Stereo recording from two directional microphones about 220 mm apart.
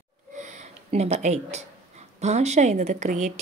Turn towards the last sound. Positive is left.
turn(degrees=-35)  # may be behind; listen again after turning